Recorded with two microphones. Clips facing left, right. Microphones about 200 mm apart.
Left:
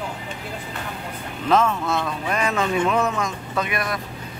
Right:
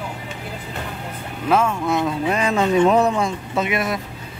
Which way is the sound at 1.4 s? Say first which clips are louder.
Right 1 dB; 10° right (ahead or behind).